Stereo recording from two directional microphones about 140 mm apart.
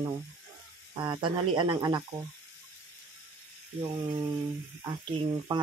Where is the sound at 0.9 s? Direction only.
30° right (ahead or behind).